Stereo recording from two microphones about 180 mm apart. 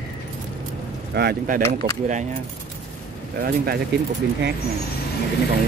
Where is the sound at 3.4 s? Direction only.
60° right (ahead or behind).